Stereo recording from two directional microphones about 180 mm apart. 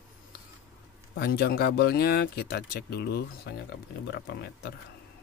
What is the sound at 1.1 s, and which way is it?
Speech, 60° left (ahead or behind).